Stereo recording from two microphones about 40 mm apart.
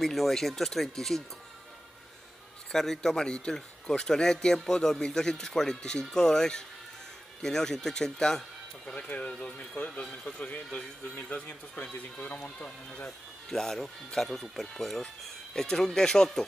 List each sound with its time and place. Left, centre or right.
0.0 s speech: centre
2.7 s speech: centre; by 13.1 s left
13.5 s speech: centre